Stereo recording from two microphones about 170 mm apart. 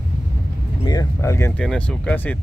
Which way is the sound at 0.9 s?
20° left (ahead or behind).